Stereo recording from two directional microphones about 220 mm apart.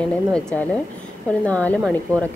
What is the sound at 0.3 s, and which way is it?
A woman's voice, 5° left (ahead or behind).